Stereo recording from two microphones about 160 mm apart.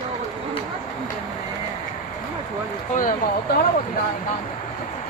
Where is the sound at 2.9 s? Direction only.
55° left (ahead or behind).